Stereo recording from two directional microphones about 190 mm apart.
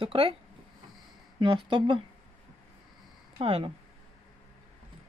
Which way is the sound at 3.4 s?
30° right (ahead or behind).